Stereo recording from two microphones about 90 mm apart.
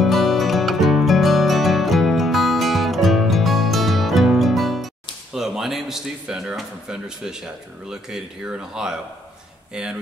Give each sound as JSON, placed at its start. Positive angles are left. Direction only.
{"t": 0.0, "sound": "music", "side_deg": 0}
{"t": 5.3, "sound": "speech", "side_deg": -5}